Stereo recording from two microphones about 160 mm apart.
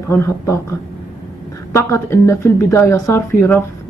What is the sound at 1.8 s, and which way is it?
Speech, 15° left (ahead or behind).